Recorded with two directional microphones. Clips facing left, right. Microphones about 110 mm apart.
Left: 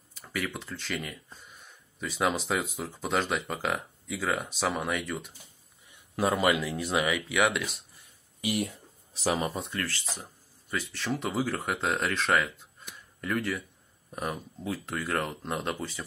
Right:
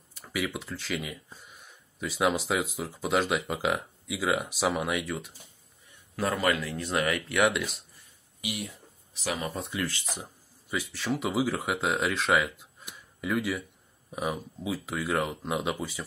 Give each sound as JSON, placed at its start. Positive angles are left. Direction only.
{"t": 0.1, "sound": "speech", "side_deg": -5}
{"t": 6.1, "sound": "speech", "side_deg": 15}
{"t": 8.4, "sound": "speech", "side_deg": 45}
{"t": 9.1, "sound": "speech", "side_deg": 35}
{"t": 9.6, "sound": "speech", "side_deg": -5}